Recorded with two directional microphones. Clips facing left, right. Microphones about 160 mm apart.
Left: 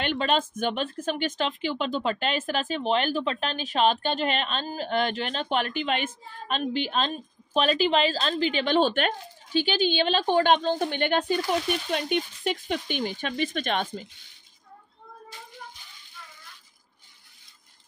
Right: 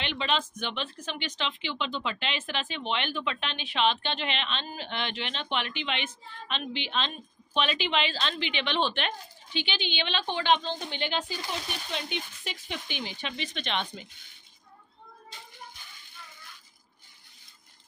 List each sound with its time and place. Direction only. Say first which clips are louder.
0.0 s speech: left 5 dB; 45° left (ahead or behind)